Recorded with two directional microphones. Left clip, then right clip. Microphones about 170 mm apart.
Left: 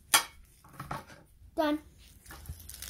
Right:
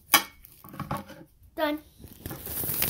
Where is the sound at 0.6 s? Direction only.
25° right (ahead or behind).